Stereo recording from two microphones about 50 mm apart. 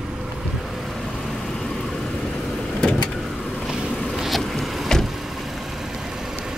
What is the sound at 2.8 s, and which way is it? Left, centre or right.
Vehicle, centre.